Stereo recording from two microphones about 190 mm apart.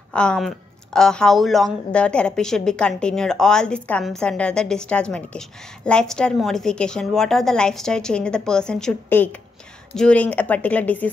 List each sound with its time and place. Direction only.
0.1 s speech: 5° left (ahead or behind)